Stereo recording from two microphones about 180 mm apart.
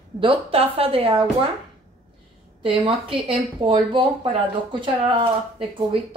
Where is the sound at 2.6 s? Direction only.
30° right (ahead or behind).